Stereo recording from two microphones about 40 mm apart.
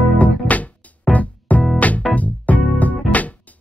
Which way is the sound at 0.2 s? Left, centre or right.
Left.